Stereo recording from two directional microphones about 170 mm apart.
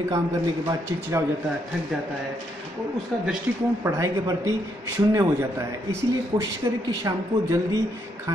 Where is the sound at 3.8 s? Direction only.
20° right (ahead or behind).